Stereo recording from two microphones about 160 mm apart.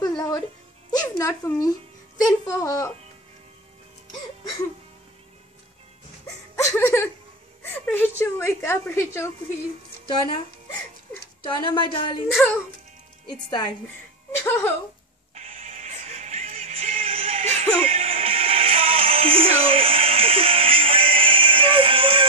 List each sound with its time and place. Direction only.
0.0 s music: 25° left (ahead or behind)
0.9 s speech: 20° left (ahead or behind)
6.2 s a woman's voice: 20° left (ahead or behind)
11.4 s speech: 30° left (ahead or behind)
12.4 s a woman's voice: 10° left (ahead or behind)
13.3 s speech: 25° left (ahead or behind)
14.4 s a woman's voice: 15° left (ahead or behind)
15.3 s music: 40° right (ahead or behind)